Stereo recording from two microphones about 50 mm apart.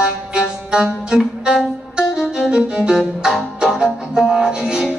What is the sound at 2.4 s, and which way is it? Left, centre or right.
Violin, right.